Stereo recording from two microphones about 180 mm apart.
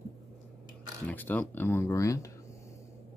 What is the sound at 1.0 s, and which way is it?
Speech, 10° left (ahead or behind).